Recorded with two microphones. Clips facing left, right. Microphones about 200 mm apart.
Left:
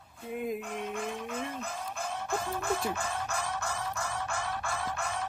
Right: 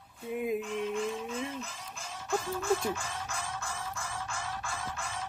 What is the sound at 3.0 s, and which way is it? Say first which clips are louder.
Music: left 5 dB; 65° left (ahead or behind).